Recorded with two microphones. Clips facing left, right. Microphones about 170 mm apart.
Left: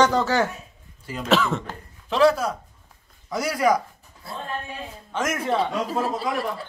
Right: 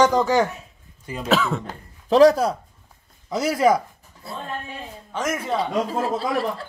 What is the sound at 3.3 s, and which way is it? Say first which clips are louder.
Speech: right 3 dB; 25° right (ahead or behind).